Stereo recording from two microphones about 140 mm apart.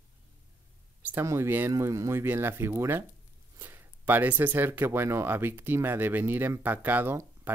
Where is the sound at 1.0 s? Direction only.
15° right (ahead or behind).